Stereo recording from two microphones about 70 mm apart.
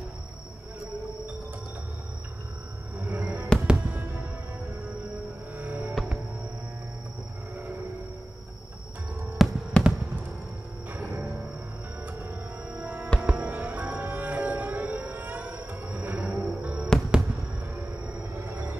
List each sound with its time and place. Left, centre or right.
3.0 s music: right
5.6 s music: right
9.4 s music: centre
9.8 s basketball bounce: centre
12.7 s music: right
18.4 s music: right